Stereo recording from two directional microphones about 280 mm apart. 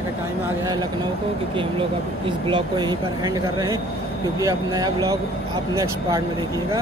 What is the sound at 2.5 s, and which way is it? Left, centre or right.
Speech, centre.